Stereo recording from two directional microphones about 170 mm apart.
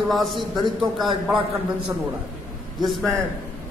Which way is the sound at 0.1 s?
Centre (ahead or behind).